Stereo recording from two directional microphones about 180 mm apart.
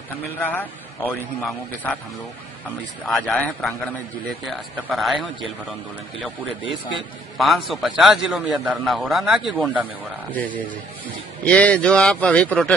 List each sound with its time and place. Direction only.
0.3 s a man's voice: 10° left (ahead or behind)
3.1 s a man's voice: 5° left (ahead or behind)
6.6 s a man's voice: 30° left (ahead or behind)
7.3 s a man's voice: centre (ahead or behind)
10.3 s a man's voice: 10° left (ahead or behind)